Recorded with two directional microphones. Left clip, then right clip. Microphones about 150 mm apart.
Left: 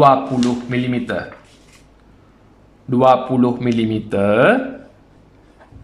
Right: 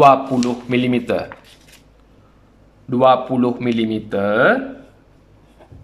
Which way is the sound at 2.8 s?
Centre (ahead or behind).